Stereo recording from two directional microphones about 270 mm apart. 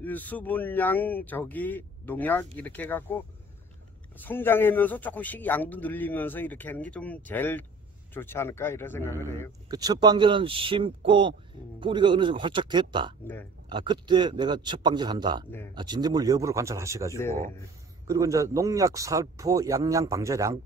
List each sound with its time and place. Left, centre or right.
0.0 s a man's voice: centre
4.2 s a man's voice: centre
9.7 s speech: centre